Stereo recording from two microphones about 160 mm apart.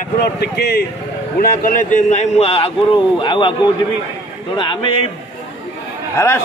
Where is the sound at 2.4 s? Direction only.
35° left (ahead or behind).